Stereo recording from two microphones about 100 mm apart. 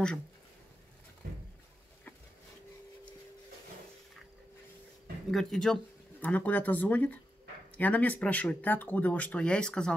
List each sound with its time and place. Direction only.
5.3 s speech: 5° left (ahead or behind)
6.2 s speech: 15° left (ahead or behind)